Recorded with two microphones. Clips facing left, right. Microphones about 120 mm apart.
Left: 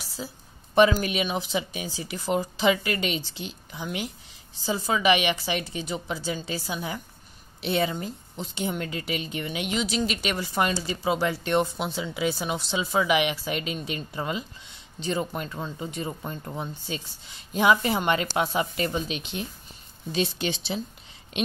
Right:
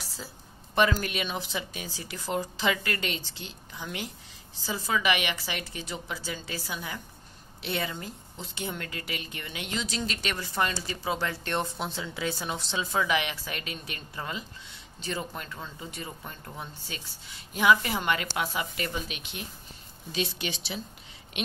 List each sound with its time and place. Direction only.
0.7 s a woman's voice: 15° left (ahead or behind)